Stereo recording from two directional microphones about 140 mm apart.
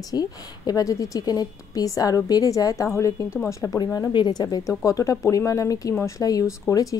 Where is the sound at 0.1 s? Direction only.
25° left (ahead or behind).